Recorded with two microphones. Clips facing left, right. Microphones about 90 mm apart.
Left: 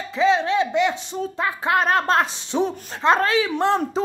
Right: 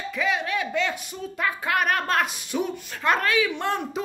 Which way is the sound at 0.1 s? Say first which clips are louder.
Left 8 dB; 30° left (ahead or behind).